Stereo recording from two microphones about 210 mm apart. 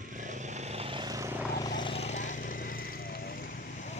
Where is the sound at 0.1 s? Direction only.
35° right (ahead or behind); by 1.5 s 10° right (ahead or behind).